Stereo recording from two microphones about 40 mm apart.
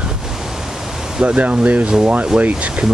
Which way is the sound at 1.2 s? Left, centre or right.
Right.